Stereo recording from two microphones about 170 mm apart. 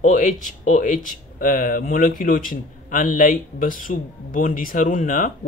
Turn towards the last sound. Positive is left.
turn(degrees=50)  # may be behind; listen again after turning